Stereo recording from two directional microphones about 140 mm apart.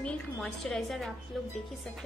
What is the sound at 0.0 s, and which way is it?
A woman's voice, 5° left (ahead or behind).